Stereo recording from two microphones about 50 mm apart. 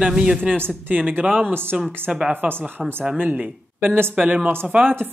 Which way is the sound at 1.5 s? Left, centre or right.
Right.